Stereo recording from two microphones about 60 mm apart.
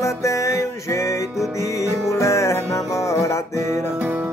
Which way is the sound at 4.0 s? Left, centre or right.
Right.